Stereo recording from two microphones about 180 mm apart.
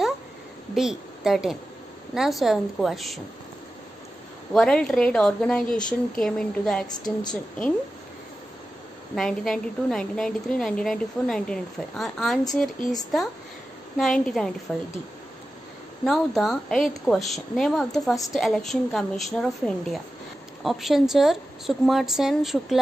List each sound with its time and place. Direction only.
0.7 s a woman's voice: centre (ahead or behind)
4.6 s a woman's voice: 5° left (ahead or behind)
6.9 s a woman's voice: 25° left (ahead or behind)
9.1 s a woman's voice: centre (ahead or behind)
16.1 s a woman's voice: centre (ahead or behind)